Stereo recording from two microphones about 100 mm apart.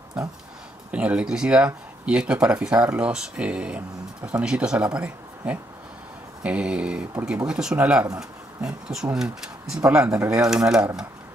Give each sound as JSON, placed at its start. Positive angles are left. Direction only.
{"t": 0.2, "sound": "speech", "side_deg": -10}